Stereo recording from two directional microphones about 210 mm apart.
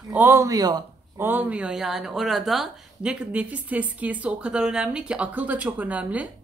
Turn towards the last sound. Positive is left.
turn(degrees=-5)  # may be behind; listen again after turning